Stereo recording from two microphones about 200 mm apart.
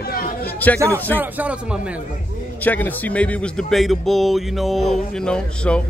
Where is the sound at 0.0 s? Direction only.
50° left (ahead or behind).